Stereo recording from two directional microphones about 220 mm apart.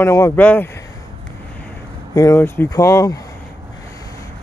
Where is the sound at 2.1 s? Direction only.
10° left (ahead or behind).